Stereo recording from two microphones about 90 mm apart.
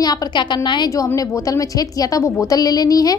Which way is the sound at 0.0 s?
45° left (ahead or behind).